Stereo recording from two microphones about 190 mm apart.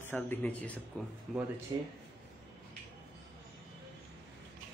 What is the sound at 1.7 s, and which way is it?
Speech, 20° right (ahead or behind).